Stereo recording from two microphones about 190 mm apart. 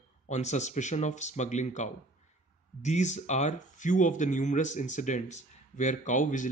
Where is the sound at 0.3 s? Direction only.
40° left (ahead or behind).